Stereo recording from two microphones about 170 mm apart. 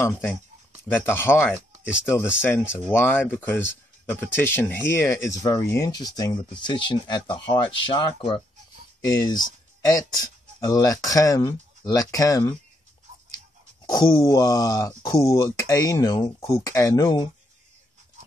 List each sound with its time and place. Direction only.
0.0 s speech: 10° left (ahead or behind)
1.7 s a sound: 5° right (ahead or behind)
2.4 s speech: 15° left (ahead or behind)
13.8 s speech: 25° left (ahead or behind)